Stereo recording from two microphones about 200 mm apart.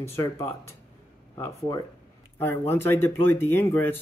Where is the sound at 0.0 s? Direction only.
15° left (ahead or behind).